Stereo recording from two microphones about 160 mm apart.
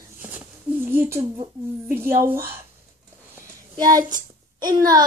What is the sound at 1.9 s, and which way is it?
Speech, 15° right (ahead or behind).